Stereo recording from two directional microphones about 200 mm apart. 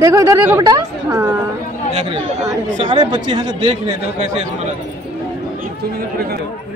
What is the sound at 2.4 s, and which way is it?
Speech, 25° right (ahead or behind).